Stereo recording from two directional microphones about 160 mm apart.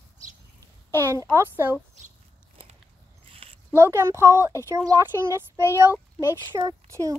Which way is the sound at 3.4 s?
35° right (ahead or behind).